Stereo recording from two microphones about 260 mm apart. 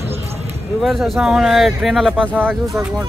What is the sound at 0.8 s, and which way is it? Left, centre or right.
Speech, centre.